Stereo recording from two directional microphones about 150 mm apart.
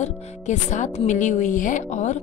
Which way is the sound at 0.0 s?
55° left (ahead or behind).